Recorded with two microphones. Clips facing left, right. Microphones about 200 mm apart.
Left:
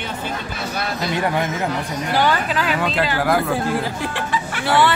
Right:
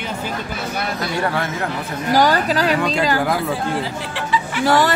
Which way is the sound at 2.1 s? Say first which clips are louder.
Right 4 dB; 40° right (ahead or behind).